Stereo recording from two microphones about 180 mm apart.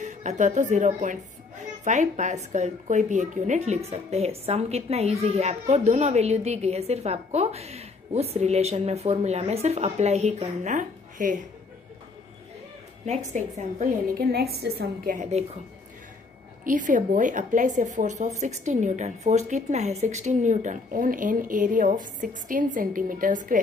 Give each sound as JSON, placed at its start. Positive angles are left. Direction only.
{"t": 0.0, "sound": "a woman's voice", "side_deg": -40}
{"t": 13.0, "sound": "a woman's voice", "side_deg": -40}
{"t": 14.1, "sound": "a woman's voice", "side_deg": -60}
{"t": 16.6, "sound": "a woman's voice", "side_deg": -45}